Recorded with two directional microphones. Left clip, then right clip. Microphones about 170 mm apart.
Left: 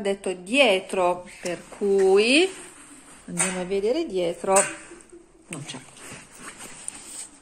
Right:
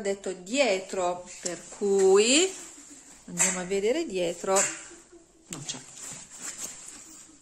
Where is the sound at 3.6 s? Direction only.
20° right (ahead or behind).